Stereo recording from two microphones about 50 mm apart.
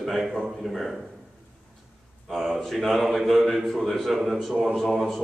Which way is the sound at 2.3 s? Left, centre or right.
Centre.